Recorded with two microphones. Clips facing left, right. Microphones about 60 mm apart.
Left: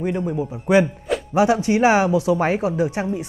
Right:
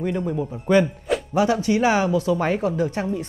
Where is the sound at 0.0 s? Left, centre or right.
Centre.